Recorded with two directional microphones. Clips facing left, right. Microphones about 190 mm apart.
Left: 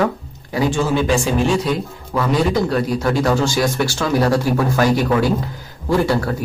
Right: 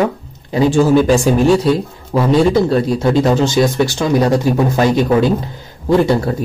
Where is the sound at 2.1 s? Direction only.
25° right (ahead or behind).